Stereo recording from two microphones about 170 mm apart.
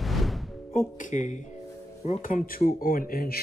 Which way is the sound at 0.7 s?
50° left (ahead or behind).